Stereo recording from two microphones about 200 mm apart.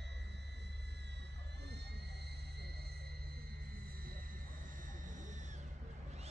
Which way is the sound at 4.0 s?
45° right (ahead or behind).